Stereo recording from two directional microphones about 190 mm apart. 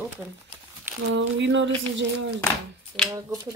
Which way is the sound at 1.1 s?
75° right (ahead or behind).